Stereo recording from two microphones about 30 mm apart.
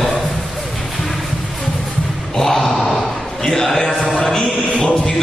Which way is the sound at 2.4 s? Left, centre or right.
Centre.